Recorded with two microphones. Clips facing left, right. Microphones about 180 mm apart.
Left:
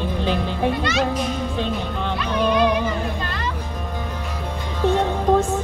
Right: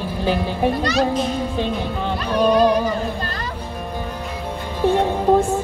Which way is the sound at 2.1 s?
40° right (ahead or behind).